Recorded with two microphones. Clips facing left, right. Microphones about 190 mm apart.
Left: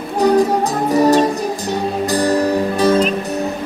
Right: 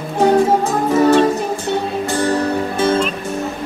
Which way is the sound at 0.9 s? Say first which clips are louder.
Right 1 dB; 40° left (ahead or behind).